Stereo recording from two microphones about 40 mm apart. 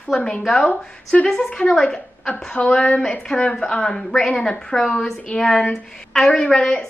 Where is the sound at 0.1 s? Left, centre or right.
Centre.